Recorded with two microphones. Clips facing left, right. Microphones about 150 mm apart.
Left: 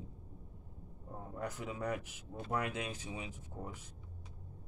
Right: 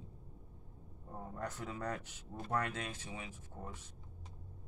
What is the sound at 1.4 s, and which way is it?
Speech, 10° left (ahead or behind).